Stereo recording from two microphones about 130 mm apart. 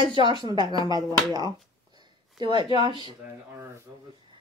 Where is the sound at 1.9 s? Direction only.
35° right (ahead or behind).